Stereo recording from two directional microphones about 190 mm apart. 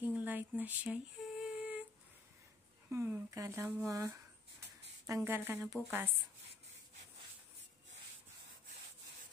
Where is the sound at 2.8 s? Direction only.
15° right (ahead or behind).